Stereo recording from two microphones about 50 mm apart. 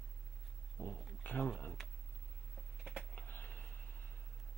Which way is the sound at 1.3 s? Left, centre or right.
Left.